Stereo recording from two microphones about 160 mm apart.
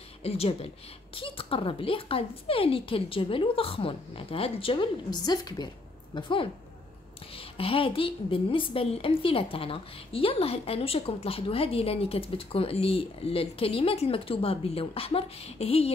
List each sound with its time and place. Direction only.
0.2 s a woman's voice: 40° left (ahead or behind)